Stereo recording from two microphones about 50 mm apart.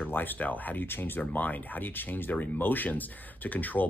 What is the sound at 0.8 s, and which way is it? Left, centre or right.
Speech, left.